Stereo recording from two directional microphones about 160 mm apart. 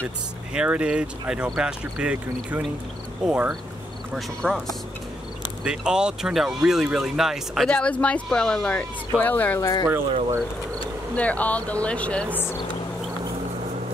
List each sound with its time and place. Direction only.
0.5 s speech: 5° right (ahead or behind); by 9.6 s 10° left (ahead or behind)
9.6 s speech: 25° left (ahead or behind)
11.1 s speech: 10° left (ahead or behind)